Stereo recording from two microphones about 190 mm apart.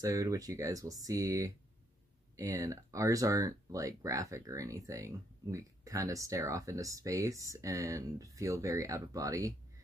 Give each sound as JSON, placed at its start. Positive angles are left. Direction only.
{"t": 0.0, "sound": "speech", "side_deg": -15}